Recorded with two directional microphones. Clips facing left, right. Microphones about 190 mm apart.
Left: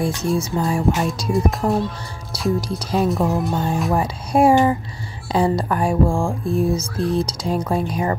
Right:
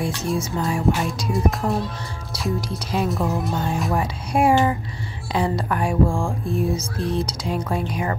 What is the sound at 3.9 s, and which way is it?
Speech, 35° left (ahead or behind).